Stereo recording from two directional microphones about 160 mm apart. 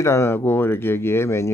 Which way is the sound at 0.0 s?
15° left (ahead or behind).